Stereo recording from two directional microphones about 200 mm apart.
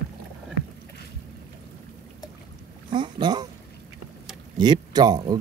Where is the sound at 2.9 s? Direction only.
20° right (ahead or behind).